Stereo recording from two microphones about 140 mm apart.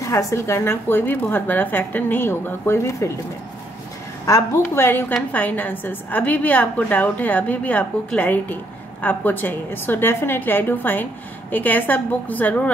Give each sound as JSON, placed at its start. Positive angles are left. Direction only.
{"t": 0.0, "sound": "a woman's voice", "side_deg": 25}
{"t": 4.3, "sound": "a woman's voice", "side_deg": 15}